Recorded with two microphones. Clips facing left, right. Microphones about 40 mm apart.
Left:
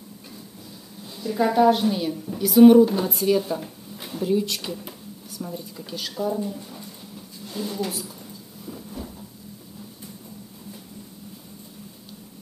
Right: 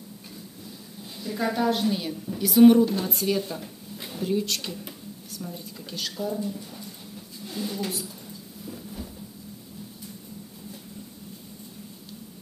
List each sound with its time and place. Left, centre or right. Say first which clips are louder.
1.1 s a woman's voice: left 7 dB; centre
7.4 s a woman's voice: left 2 dB; centre
8.6 s a sound: left 2 dB; centre